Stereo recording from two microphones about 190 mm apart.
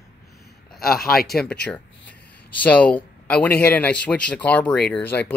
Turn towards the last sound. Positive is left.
turn(degrees=10)  # may be behind; listen again after turning